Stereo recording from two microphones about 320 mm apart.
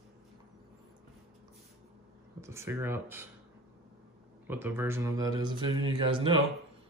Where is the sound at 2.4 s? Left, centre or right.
Centre.